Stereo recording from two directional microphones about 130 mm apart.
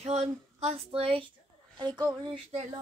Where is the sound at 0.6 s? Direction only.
50° right (ahead or behind).